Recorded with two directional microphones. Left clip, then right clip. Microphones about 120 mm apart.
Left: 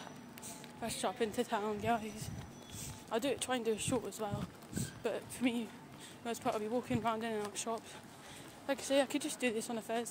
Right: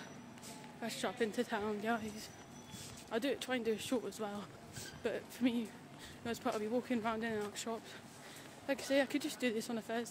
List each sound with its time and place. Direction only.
0.7 s speech: 25° right (ahead or behind)